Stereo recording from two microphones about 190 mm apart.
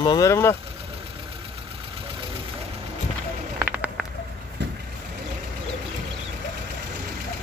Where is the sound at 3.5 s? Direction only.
10° right (ahead or behind).